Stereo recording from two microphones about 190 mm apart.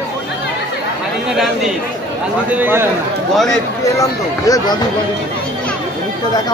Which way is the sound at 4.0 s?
20° left (ahead or behind).